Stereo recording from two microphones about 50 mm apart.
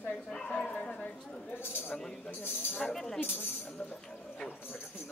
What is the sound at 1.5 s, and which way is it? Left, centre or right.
Speech, left.